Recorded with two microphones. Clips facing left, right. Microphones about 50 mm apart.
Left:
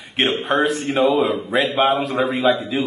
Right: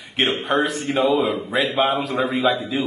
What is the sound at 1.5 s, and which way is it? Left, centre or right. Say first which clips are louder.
Speech: left 3 dB; left.